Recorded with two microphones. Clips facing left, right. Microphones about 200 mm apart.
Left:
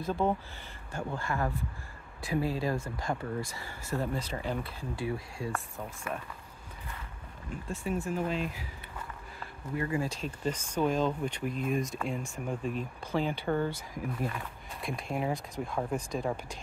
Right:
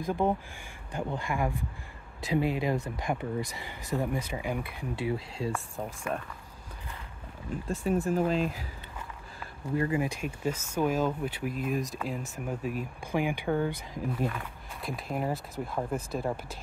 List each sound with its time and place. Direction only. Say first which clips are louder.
0.0 s speech: right 1 dB; 15° right (ahead or behind)
7.6 s speech: right 5 dB; 40° right (ahead or behind)
9.8 s speech: right 3 dB; 20° right (ahead or behind)
14.2 s speech: right 3 dB; centre (ahead or behind)